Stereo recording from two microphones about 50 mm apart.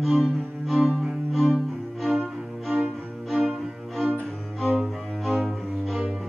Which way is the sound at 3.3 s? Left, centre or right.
Centre.